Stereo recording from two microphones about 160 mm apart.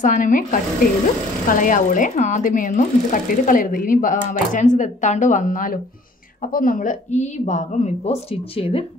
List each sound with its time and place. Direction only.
0.0 s speech: 55° left (ahead or behind); by 8.8 s 35° left (ahead or behind)